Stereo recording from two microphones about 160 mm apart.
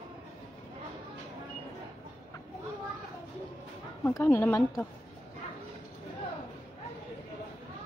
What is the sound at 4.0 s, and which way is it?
Speech, 15° left (ahead or behind).